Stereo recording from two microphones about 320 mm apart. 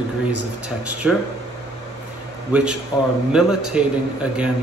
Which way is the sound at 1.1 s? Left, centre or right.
Centre.